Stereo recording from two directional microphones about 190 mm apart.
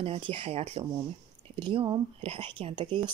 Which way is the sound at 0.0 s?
30° right (ahead or behind).